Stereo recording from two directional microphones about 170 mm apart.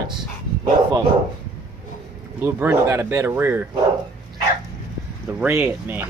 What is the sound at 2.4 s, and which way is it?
Speech, 15° right (ahead or behind).